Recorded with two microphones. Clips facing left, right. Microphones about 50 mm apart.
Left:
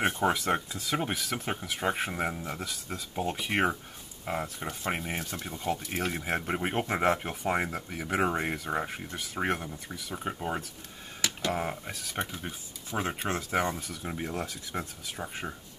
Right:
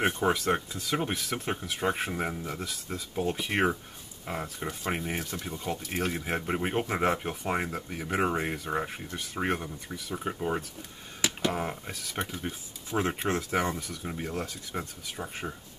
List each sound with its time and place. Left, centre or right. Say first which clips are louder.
0.0 s speech: right 1 dB; centre
11.1 s a sound: right 2 dB; centre
11.5 s speech: even; centre